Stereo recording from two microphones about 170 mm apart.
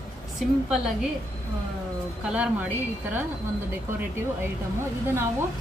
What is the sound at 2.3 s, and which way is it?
Speech, 10° right (ahead or behind).